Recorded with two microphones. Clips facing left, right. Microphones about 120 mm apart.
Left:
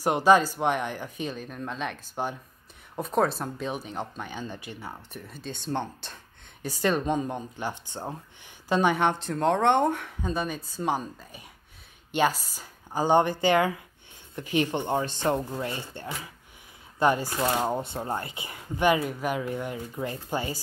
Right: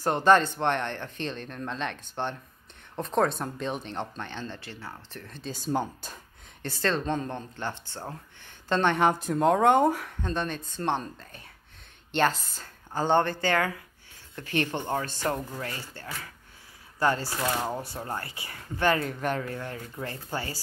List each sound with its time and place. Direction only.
0.0 s speech: 10° left (ahead or behind)
5.5 s speech: 5° right (ahead or behind)
6.6 s speech: 15° left (ahead or behind)